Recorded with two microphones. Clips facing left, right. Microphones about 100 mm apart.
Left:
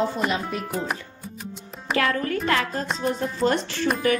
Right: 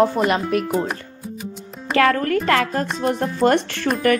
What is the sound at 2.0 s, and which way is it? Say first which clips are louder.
Speech: right 7 dB; 75° right (ahead or behind).